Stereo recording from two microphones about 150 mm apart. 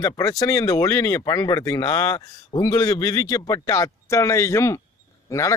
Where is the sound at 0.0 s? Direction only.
25° left (ahead or behind).